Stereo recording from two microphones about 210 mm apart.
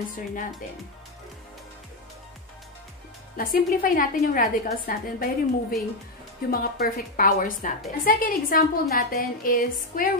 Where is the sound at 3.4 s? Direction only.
40° left (ahead or behind).